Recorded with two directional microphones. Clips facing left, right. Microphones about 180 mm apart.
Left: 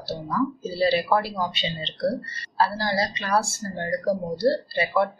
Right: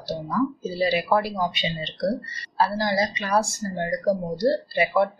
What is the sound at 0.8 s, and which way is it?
Speech, 15° right (ahead or behind).